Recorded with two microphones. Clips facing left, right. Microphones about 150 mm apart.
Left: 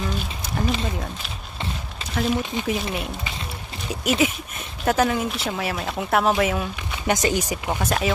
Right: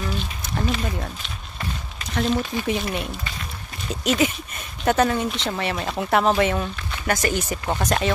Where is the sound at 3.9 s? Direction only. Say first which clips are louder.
Even; 5° left (ahead or behind).